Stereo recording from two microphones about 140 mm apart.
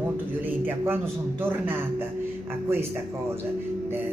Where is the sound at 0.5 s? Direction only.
15° right (ahead or behind).